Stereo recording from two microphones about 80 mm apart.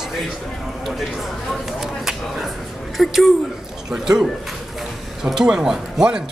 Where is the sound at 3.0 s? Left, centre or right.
Centre.